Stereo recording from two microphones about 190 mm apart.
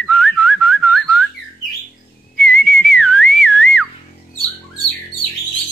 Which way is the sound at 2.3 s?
5° left (ahead or behind).